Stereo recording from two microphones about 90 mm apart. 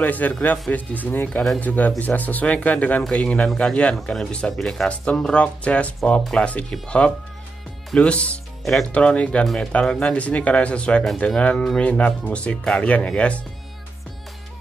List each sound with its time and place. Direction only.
0.0 s speech: 20° left (ahead or behind)